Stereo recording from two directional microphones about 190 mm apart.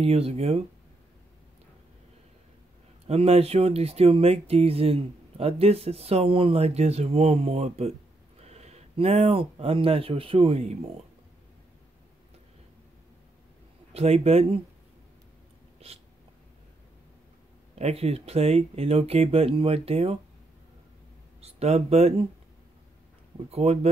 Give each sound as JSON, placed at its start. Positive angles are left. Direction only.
{"t": 0.0, "sound": "speech", "side_deg": -30}
{"t": 3.1, "sound": "speech", "side_deg": -35}
{"t": 13.9, "sound": "speech", "side_deg": -30}
{"t": 15.8, "sound": "speech", "side_deg": -30}
{"t": 17.7, "sound": "speech", "side_deg": -35}
{"t": 21.4, "sound": "speech", "side_deg": -35}
{"t": 23.5, "sound": "speech", "side_deg": -35}